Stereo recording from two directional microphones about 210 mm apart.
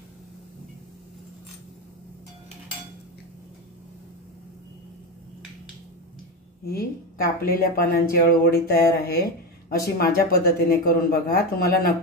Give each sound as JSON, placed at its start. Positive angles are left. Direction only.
{"t": 6.6, "sound": "a woman's voice", "side_deg": 45}